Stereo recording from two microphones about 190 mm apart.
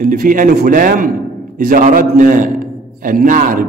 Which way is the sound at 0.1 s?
45° right (ahead or behind).